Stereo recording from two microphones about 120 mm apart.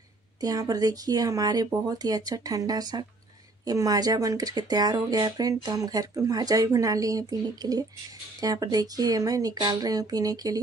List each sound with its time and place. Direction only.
0.4 s speech: 30° right (ahead or behind)